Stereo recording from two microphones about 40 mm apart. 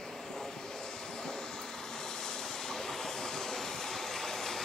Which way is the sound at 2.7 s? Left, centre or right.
Centre.